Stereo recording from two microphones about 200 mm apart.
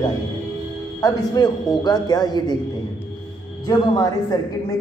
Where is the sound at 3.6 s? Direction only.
20° left (ahead or behind).